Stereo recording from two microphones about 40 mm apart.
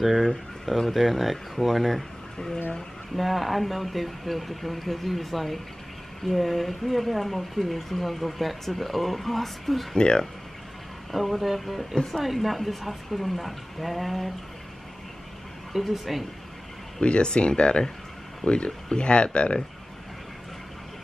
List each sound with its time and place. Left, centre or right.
0.0 s speech: centre
9.9 s speech: left
11.1 s speech: centre
15.8 s speech: centre
17.0 s speech: left